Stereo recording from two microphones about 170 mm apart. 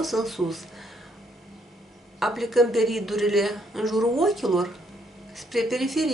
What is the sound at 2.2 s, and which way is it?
Speech, centre (ahead or behind).